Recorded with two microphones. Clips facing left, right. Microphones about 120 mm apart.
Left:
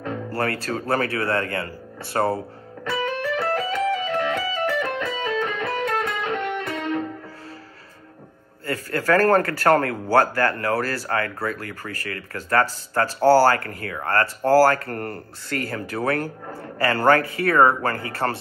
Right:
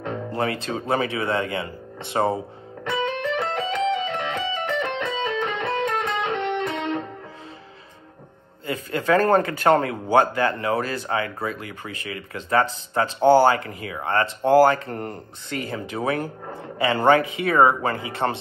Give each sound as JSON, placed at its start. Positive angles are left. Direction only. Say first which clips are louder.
{"t": 0.0, "sound": "speech", "louder": "even", "side_deg": -20}
{"t": 2.1, "sound": "music", "louder": "even", "side_deg": -20}
{"t": 8.6, "sound": "a man's voice", "louder": "even", "side_deg": -20}